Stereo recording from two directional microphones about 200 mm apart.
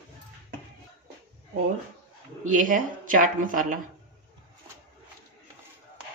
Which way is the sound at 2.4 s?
40° right (ahead or behind).